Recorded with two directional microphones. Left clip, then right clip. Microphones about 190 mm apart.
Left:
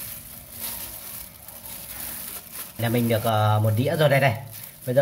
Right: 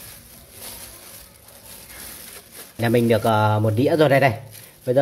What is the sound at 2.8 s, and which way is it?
Speech, 40° right (ahead or behind).